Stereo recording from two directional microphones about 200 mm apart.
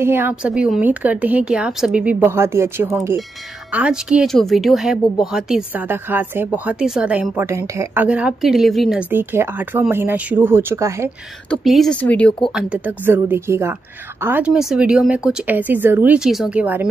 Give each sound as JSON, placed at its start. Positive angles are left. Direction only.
{"t": 0.0, "sound": "speech", "side_deg": -10}
{"t": 11.5, "sound": "a woman's voice", "side_deg": 0}